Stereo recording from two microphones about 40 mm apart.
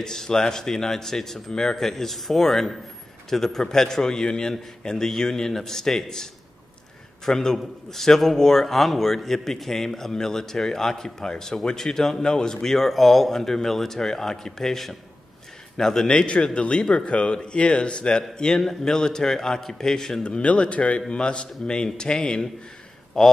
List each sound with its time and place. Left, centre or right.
0.0 s a man's voice: centre
7.2 s a man's voice: centre
12.5 s a man's voice: centre
20.2 s a man's voice: left; by 23.3 s centre